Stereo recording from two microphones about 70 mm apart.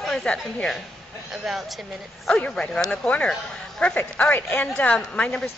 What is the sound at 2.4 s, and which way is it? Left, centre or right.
A woman's voice, centre.